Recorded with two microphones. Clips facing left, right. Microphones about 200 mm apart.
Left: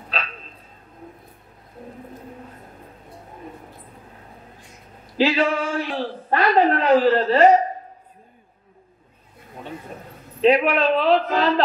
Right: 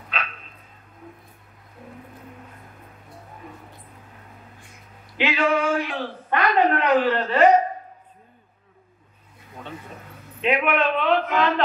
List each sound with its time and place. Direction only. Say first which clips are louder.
0.1 s a sound: left 2 dB; 35° left (ahead or behind)
5.1 s a man's voice: left 2 dB; 35° left (ahead or behind)
10.4 s a man's voice: left 5 dB; 35° left (ahead or behind)